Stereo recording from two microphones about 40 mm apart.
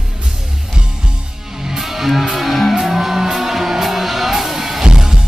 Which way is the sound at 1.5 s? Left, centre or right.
Centre.